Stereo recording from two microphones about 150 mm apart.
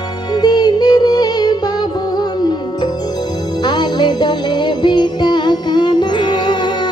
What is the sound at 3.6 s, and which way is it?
Music, 30° left (ahead or behind).